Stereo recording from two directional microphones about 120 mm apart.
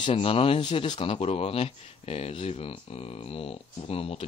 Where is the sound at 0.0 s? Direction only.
50° left (ahead or behind).